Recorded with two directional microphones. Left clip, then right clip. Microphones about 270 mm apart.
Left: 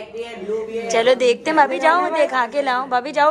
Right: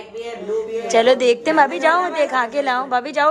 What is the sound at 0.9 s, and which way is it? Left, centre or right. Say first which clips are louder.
A woman's voice: right 1 dB; centre.